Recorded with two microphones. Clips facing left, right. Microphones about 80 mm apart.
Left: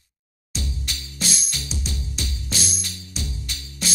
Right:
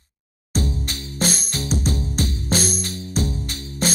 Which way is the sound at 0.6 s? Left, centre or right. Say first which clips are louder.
Right 8 dB; right.